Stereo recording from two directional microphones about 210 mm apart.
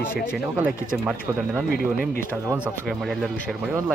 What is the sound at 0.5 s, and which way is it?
Speech, 10° right (ahead or behind).